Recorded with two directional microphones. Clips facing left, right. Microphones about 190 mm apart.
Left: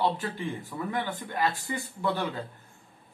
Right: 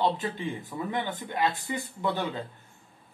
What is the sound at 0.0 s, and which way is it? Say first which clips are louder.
Speech: right 1 dB; 20° right (ahead or behind).